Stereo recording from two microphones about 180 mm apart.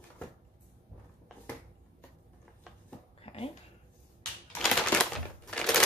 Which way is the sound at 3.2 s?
35° left (ahead or behind).